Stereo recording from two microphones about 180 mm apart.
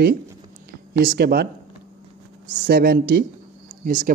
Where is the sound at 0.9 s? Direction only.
60° right (ahead or behind).